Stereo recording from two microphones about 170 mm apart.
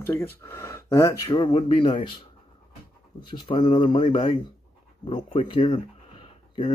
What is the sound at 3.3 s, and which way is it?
Speech, 30° left (ahead or behind).